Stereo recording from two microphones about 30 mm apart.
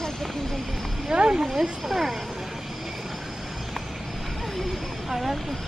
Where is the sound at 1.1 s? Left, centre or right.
Right.